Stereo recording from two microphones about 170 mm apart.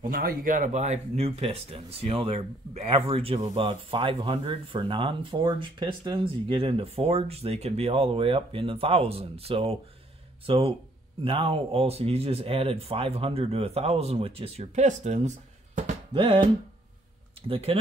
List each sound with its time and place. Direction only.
0.0 s speech: 60° right (ahead or behind)
16.1 s music: 30° right (ahead or behind)
17.4 s speech: 35° right (ahead or behind)